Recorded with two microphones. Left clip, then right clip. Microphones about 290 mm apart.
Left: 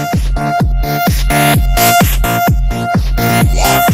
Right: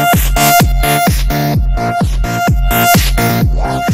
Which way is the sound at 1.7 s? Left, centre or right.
Left.